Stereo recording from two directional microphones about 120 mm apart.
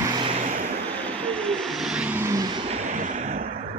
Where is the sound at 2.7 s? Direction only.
90° right.